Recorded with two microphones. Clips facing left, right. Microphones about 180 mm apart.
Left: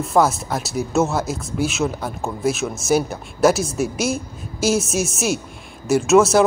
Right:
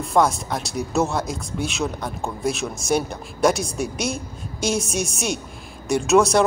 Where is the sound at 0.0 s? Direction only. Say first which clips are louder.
Left 2 dB; 5° left (ahead or behind).